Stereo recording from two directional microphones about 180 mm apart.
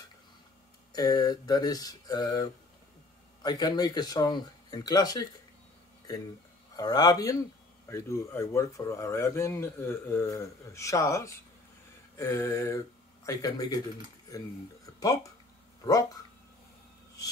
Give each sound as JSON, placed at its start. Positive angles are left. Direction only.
{"t": 0.9, "sound": "speech", "side_deg": 20}
{"t": 6.8, "sound": "speech", "side_deg": 20}
{"t": 15.8, "sound": "speech", "side_deg": 20}